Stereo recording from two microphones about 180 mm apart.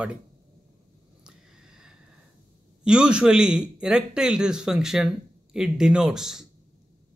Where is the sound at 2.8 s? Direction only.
5° right (ahead or behind).